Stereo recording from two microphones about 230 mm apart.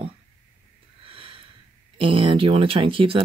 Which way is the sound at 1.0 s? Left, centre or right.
Right.